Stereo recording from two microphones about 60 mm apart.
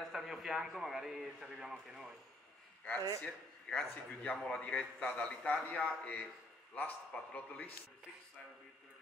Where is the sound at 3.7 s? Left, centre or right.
Left.